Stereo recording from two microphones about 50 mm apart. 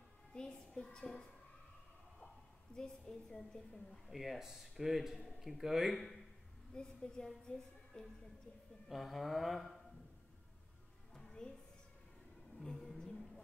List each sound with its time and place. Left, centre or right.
0.3 s speech: centre
2.7 s a woman's voice: centre
4.1 s speech: centre
6.7 s a woman's voice: centre
8.8 s speech: centre
11.1 s a sound: centre
12.5 s a sound: centre